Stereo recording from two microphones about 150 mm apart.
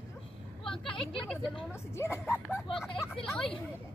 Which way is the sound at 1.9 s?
15° left (ahead or behind).